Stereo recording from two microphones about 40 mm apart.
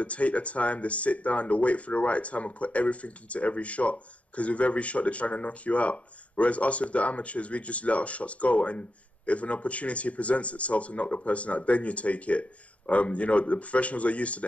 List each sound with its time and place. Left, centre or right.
0.0 s speech: left